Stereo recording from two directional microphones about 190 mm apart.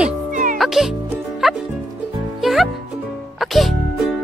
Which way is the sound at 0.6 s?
Centre (ahead or behind).